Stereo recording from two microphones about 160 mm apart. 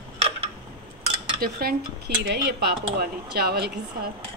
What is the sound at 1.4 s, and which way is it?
A woman's voice, 70° right (ahead or behind).